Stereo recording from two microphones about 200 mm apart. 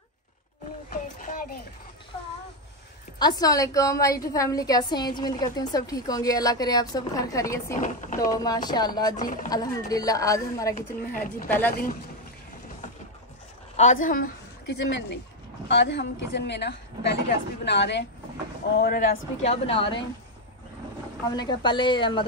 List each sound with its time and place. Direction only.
0.8 s a sound: 45° left (ahead or behind)
3.2 s a woman's voice: 20° left (ahead or behind)
7.8 s a woman's voice: 40° left (ahead or behind)
8.3 s speech: 20° left (ahead or behind)
9.1 s a woman's voice: 40° left (ahead or behind)
9.5 s a woman's voice: 20° left (ahead or behind)
10.7 s speech: 45° left (ahead or behind)
11.4 s a woman's voice: 10° left (ahead or behind)
13.7 s a woman's voice: 40° left (ahead or behind); by 18.0 s 60° left (ahead or behind)
18.8 s a woman's voice: 50° left (ahead or behind); by 20.1 s 25° left (ahead or behind)
21.3 s speech: 20° left (ahead or behind)